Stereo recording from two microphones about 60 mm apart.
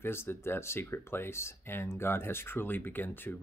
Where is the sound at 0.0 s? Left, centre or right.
Left.